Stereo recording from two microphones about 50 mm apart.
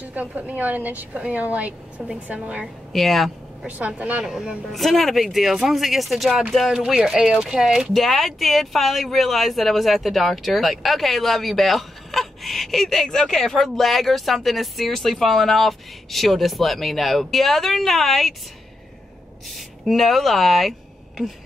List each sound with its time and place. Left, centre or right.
0.0 s a woman's voice: right
2.9 s speech: centre
3.6 s a woman's voice: right
4.2 s speech: centre
4.7 s speech: centre
6.7 s speech: centre
7.9 s speech: centre
19.9 s speech: centre